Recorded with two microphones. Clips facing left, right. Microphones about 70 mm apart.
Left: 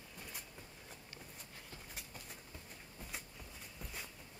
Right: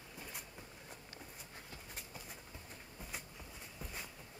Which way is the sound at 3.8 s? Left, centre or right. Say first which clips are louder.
Right 1 dB; centre.